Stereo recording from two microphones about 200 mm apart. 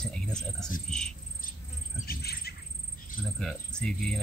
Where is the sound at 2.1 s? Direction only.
50° left (ahead or behind).